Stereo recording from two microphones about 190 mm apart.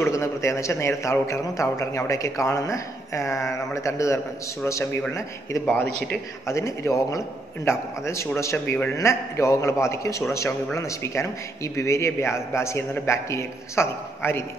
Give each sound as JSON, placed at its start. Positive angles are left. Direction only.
{"t": 0.0, "sound": "a man's voice", "side_deg": 15}